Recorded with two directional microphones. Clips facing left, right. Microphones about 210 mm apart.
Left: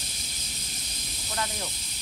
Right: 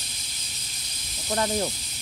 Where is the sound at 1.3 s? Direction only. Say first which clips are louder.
Right 9 dB; 40° right (ahead or behind).